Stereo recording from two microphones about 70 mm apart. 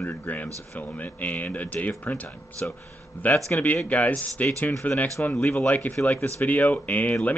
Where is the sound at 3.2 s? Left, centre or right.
Left.